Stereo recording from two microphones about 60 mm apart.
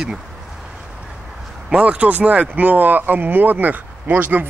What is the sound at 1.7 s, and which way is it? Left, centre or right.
Speech, right.